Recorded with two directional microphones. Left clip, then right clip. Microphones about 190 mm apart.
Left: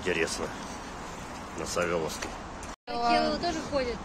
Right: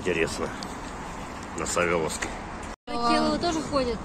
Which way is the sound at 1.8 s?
10° left (ahead or behind).